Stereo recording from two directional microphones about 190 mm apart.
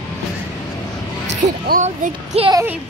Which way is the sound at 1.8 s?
35° right (ahead or behind).